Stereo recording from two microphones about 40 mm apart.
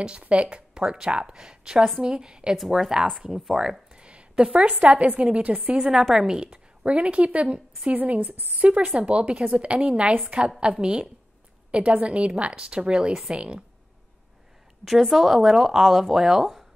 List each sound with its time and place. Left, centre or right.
0.3 s speech: right
0.8 s a woman's voice: centre
2.5 s speech: centre
3.2 s speech: centre
3.9 s a sound: right
4.6 s a woman's voice: right
5.8 s speech: centre
6.4 s a woman's voice: right
7.9 s a woman's voice: right
8.5 s a woman's voice: right
14.9 s speech: centre